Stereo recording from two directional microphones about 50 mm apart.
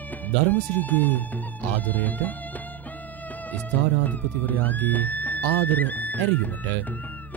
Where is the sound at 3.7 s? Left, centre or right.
Left.